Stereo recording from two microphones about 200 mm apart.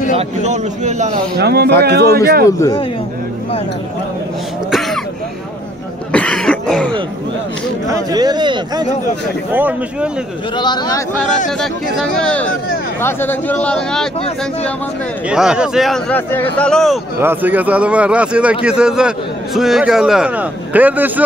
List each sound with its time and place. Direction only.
0.4 s a man's voice: 35° right (ahead or behind)
1.3 s speech: 55° right (ahead or behind)
2.4 s speech: 15° left (ahead or behind)
4.6 s throat clearing: centre (ahead or behind)
6.1 s cough: 5° left (ahead or behind)
7.9 s speech: 20° right (ahead or behind)
9.5 s a man's voice: 10° right (ahead or behind)
10.6 s speech: 20° left (ahead or behind)
11.6 s a man's voice: 5° left (ahead or behind)
15.2 s a man's voice: 5° right (ahead or behind)
17.2 s a man's voice: 10° right (ahead or behind)